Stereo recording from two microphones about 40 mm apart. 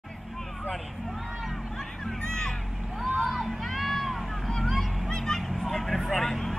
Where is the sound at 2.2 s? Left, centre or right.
Centre.